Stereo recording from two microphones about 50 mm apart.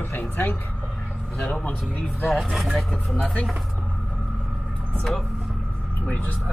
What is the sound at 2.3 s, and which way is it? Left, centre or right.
Speech, centre.